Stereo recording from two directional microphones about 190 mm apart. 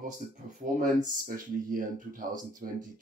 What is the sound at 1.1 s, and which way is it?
Speech, 45° right (ahead or behind).